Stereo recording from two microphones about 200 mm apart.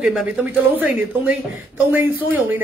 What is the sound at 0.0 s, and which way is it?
Speech, 5° right (ahead or behind).